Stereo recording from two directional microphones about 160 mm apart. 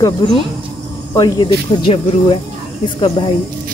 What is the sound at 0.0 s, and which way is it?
Speech, 30° left (ahead or behind).